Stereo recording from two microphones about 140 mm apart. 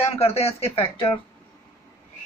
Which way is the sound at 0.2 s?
45° left (ahead or behind).